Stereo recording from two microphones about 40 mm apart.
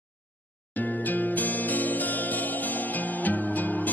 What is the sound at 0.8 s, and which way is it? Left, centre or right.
Music, left.